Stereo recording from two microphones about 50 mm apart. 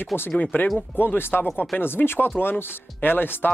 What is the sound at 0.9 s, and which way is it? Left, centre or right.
Speech, left.